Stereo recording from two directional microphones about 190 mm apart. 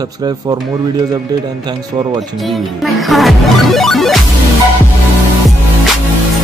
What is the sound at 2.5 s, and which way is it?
Music, centre (ahead or behind).